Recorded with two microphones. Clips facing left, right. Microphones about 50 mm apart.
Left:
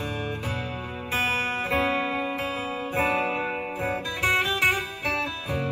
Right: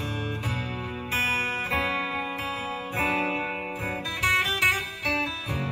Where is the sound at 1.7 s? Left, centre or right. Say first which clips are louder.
Left 2 dB; left.